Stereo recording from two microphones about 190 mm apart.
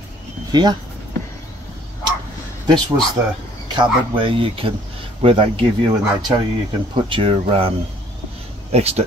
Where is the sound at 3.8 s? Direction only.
25° right (ahead or behind).